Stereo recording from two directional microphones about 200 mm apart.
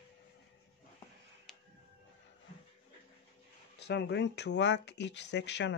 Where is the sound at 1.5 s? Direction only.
Centre (ahead or behind).